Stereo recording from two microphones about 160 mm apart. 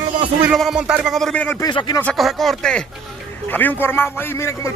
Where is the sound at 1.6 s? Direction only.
25° left (ahead or behind).